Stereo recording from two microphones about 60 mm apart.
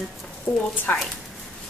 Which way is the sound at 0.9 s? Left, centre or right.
Left.